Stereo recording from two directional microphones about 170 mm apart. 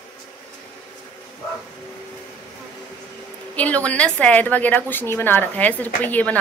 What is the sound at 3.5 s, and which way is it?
A woman's voice, 10° left (ahead or behind).